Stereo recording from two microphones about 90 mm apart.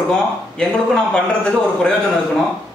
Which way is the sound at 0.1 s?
10° left (ahead or behind).